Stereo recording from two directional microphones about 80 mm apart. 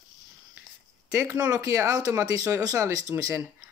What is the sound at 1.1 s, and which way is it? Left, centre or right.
Speech, right.